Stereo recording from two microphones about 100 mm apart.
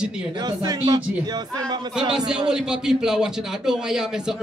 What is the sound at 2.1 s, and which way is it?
A man's voice, 5° right (ahead or behind).